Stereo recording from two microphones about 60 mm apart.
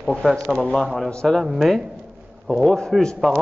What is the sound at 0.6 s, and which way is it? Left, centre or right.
A man's voice, centre.